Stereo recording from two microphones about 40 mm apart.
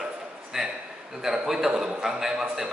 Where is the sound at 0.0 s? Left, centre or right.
Centre.